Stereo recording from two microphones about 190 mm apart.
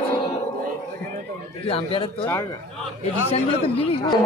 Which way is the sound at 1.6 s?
30° left (ahead or behind).